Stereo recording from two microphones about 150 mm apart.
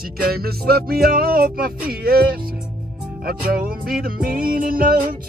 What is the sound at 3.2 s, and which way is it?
Music, 80° right.